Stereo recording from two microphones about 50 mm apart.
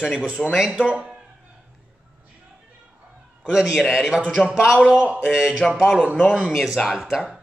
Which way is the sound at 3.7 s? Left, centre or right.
Centre.